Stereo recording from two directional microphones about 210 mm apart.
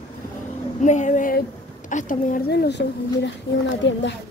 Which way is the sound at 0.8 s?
35° left (ahead or behind).